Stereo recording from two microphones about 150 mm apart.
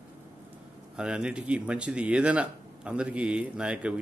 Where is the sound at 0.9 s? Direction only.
5° right (ahead or behind).